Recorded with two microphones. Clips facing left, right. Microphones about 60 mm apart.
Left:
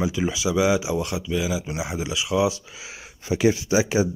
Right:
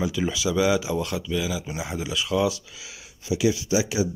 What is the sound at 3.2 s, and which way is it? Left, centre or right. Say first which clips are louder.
Speech: left 3 dB; left.